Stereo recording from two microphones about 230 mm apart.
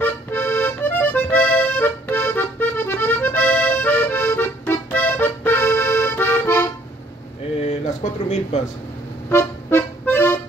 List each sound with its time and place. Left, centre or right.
0.0 s accordion: centre
7.6 s a sound: left
9.3 s music: centre